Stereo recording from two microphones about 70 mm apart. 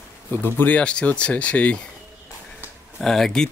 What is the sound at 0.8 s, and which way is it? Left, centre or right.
Speech, centre.